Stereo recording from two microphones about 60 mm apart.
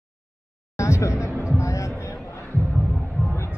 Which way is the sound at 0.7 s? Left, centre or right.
Left.